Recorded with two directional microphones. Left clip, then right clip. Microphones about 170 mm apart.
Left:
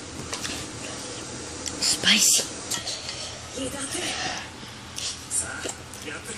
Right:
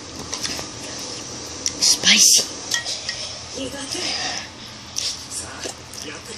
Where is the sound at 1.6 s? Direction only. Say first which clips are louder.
Right 6 dB; centre (ahead or behind).